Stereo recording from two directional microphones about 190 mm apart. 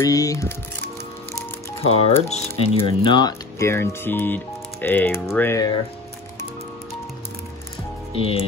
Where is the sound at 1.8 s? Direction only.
30° left (ahead or behind).